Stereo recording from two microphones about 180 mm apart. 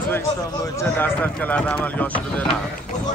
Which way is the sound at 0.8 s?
10° left (ahead or behind).